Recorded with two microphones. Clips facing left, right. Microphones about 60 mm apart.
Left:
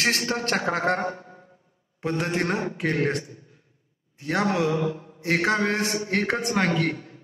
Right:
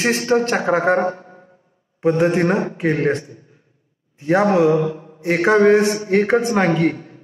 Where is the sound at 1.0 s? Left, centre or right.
Right.